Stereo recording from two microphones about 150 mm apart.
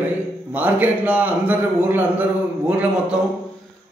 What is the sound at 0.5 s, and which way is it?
A man's voice, 10° right (ahead or behind).